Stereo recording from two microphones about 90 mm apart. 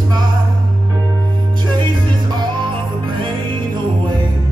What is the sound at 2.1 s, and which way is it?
Music, 55° right (ahead or behind).